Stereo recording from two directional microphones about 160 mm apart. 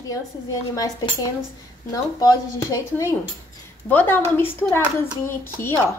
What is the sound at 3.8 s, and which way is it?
A woman's voice, 10° left (ahead or behind).